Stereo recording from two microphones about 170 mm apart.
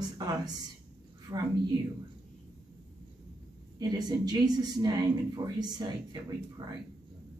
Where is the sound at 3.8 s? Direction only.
25° right (ahead or behind).